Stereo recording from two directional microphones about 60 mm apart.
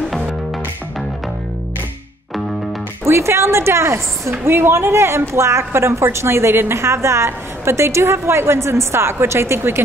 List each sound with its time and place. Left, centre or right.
3.1 s a woman's voice: right